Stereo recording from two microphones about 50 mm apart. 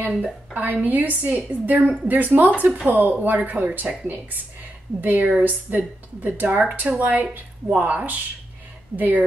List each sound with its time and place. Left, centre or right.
0.6 s a woman's voice: right
5.0 s a woman's voice: right